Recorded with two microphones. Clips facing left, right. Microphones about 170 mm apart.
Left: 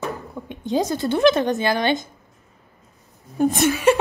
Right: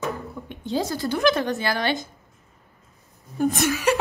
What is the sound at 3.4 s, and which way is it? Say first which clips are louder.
Speech: left 3 dB; 25° left (ahead or behind).